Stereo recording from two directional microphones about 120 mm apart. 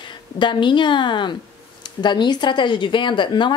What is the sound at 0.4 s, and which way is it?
A woman's voice, 40° left (ahead or behind).